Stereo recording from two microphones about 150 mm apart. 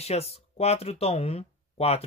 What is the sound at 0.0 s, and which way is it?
Speech, 45° left (ahead or behind).